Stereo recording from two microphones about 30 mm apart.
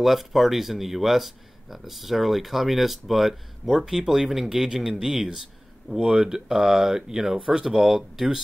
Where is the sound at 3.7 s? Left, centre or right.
Centre.